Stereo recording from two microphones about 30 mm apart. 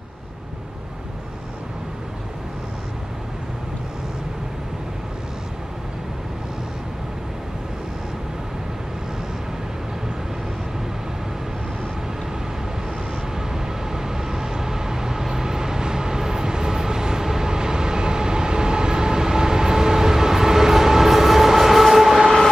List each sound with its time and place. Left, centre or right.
13.9 s vehicle: centre